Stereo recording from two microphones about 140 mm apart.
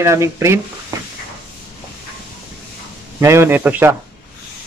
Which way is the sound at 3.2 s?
20° right (ahead or behind).